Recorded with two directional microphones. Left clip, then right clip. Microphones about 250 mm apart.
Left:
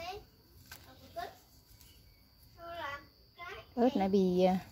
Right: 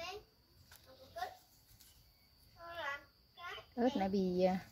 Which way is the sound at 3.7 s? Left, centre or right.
Centre.